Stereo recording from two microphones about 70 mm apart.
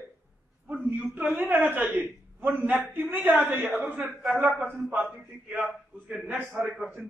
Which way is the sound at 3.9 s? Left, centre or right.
Centre.